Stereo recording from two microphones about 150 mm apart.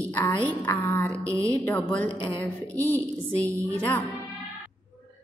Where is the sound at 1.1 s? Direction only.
20° right (ahead or behind).